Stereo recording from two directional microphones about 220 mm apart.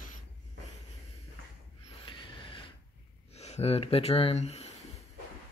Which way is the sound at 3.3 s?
30° left (ahead or behind).